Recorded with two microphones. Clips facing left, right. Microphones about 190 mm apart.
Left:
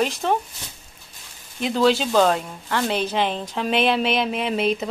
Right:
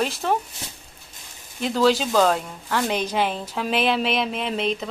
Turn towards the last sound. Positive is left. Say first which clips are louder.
# left 3 dB
turn(degrees=5)  # may be behind; listen again after turning